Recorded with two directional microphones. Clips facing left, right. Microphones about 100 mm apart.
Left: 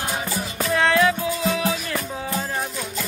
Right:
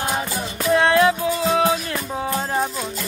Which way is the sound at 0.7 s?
20° right (ahead or behind).